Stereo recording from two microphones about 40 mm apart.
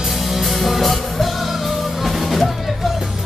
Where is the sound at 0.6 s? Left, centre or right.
Centre.